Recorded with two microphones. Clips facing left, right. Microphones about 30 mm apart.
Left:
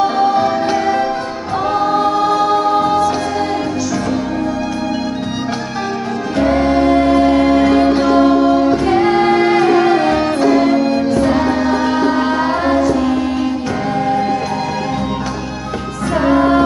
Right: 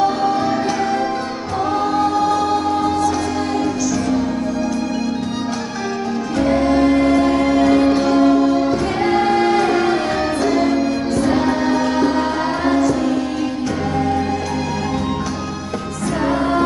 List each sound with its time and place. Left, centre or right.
0.0 s music: left
1.6 s choir: centre
6.3 s music: left
16.2 s music: centre